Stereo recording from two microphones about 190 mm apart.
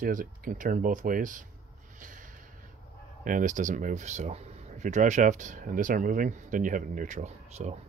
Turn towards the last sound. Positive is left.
turn(degrees=-40)  # may be behind; listen again after turning